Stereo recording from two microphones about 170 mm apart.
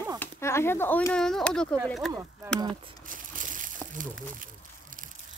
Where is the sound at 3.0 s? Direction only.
50° right (ahead or behind).